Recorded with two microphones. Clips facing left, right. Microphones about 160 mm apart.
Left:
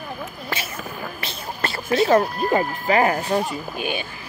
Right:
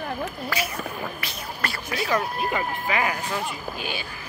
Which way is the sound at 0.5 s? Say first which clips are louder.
Right 1 dB; 25° left (ahead or behind).